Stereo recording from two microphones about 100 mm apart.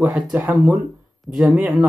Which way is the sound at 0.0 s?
15° right (ahead or behind).